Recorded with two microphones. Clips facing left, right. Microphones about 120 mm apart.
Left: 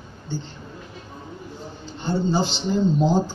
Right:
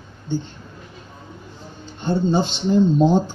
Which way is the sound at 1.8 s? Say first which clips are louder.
Right 3 dB; 20° right (ahead or behind).